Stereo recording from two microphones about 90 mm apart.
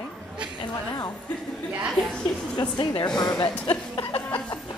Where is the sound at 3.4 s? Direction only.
70° left (ahead or behind).